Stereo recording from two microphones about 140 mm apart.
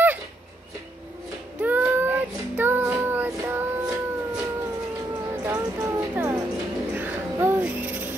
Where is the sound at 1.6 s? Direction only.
10° right (ahead or behind).